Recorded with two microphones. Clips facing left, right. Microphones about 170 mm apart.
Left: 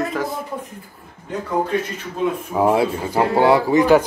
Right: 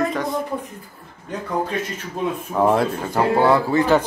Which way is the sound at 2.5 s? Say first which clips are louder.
Even; 5° left (ahead or behind).